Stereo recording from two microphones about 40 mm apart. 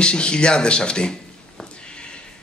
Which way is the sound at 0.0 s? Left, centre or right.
Left.